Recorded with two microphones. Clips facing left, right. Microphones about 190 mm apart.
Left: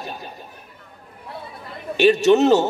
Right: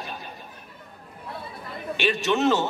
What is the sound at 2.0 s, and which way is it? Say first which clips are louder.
Speech: left 9 dB; 40° left (ahead or behind).